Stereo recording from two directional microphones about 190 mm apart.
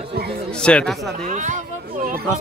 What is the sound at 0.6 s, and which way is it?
Speech, 5° left (ahead or behind).